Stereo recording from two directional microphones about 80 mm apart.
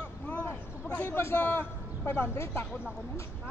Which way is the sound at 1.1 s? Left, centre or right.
Left.